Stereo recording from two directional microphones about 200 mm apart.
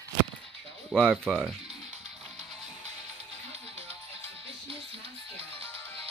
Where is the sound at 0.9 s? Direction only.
Centre (ahead or behind).